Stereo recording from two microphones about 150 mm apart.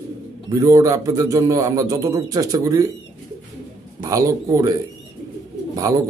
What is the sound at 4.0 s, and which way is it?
Speech, 20° right (ahead or behind).